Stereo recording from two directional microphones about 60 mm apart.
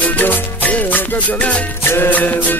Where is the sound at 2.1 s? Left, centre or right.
Left.